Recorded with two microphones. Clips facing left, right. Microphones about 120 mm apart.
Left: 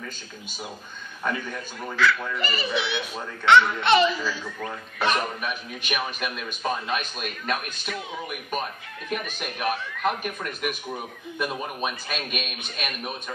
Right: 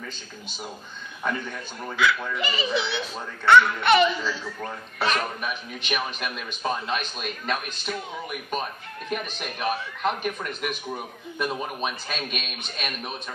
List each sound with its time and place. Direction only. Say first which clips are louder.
1.2 s a man's voice: even; centre (ahead or behind)
3.5 s a child's voice: right 1 dB; 30° left (ahead or behind)
5.0 s a man's voice: left 1 dB; 15° left (ahead or behind)
5.4 s a man's voice: even; 5° left (ahead or behind)
9.4 s a man's voice: left 1 dB; 5° left (ahead or behind)